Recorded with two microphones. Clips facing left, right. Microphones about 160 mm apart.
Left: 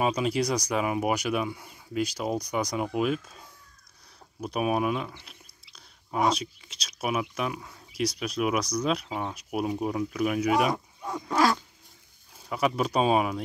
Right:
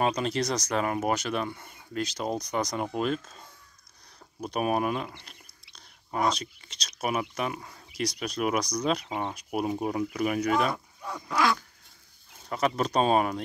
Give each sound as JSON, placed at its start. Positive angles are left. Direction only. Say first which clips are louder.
{"t": 0.0, "sound": "speech", "louder": "left 1 dB", "side_deg": 5}
{"t": 10.7, "sound": "a sound", "louder": "left 3 dB", "side_deg": 40}
{"t": 11.2, "sound": "dog", "louder": "left 2 dB", "side_deg": 40}
{"t": 12.4, "sound": "speech", "louder": "left 1 dB", "side_deg": 10}